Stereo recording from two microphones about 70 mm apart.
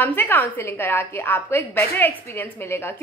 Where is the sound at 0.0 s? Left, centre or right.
Left.